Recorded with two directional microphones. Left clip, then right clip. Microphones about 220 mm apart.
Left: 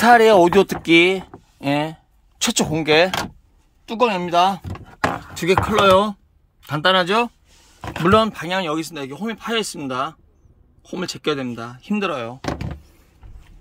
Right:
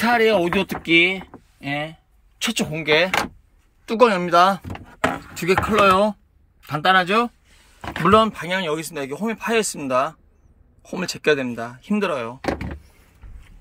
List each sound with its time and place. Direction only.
0.0 s speech: 20° left (ahead or behind)
3.8 s speech: centre (ahead or behind)
4.9 s a sound: 15° left (ahead or behind)
6.7 s speech: 15° left (ahead or behind)